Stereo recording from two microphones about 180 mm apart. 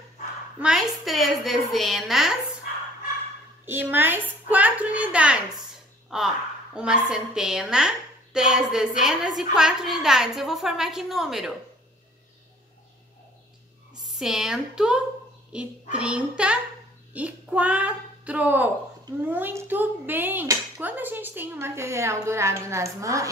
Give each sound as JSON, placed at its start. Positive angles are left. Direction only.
{"t": 0.6, "sound": "a woman's voice", "side_deg": -5}
{"t": 2.7, "sound": "a sound", "side_deg": 45}
{"t": 3.6, "sound": "a woman's voice", "side_deg": -10}
{"t": 14.0, "sound": "a woman's voice", "side_deg": 0}